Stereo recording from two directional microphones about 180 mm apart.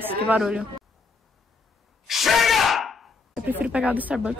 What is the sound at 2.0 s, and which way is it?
Speech, centre (ahead or behind).